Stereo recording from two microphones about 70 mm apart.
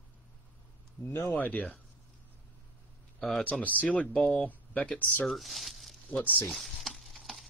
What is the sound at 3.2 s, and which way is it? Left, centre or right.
Speech, centre.